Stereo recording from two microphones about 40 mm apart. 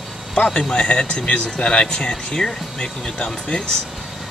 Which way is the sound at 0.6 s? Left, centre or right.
Centre.